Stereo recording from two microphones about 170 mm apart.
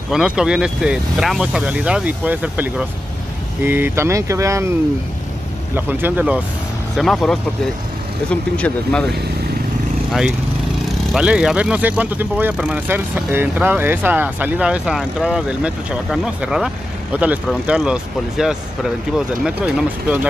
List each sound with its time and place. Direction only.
0.1 s speech: 5° right (ahead or behind)
5.8 s speech: 10° right (ahead or behind)
7.0 s speech: centre (ahead or behind)
11.1 s speech: 5° right (ahead or behind)